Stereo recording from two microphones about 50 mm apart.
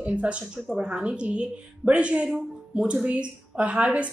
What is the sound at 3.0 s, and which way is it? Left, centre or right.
A woman's voice, right.